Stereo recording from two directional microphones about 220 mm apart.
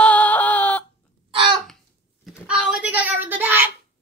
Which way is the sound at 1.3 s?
25° right (ahead or behind).